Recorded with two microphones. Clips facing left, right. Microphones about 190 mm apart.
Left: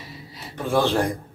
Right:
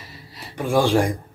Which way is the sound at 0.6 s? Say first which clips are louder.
Right 3 dB; 10° right (ahead or behind).